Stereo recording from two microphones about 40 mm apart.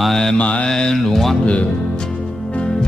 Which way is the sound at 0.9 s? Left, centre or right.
Centre.